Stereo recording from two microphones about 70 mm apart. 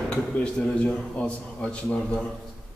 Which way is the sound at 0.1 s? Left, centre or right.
Centre.